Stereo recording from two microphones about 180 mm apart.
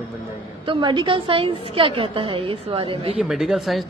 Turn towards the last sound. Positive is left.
turn(degrees=0)  # may be behind; listen again after turning